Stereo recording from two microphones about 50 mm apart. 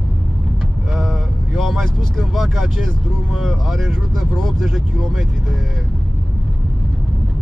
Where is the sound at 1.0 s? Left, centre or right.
Centre.